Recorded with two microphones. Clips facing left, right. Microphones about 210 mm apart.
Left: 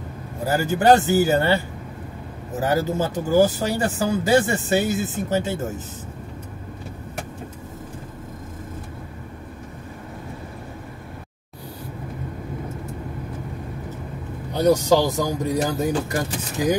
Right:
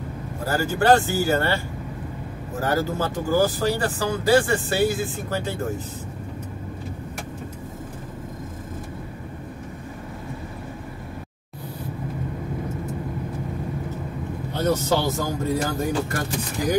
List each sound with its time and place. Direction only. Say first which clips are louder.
0.5 s speech: left 2 dB; 20° left (ahead or behind)
14.5 s speech: left 5 dB; 15° left (ahead or behind)